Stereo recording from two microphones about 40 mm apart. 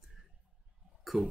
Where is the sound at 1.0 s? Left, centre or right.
Centre.